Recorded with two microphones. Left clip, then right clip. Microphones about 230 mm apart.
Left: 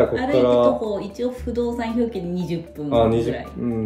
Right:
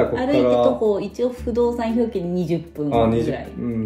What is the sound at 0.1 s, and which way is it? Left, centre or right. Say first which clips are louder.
A woman's voice: even; centre.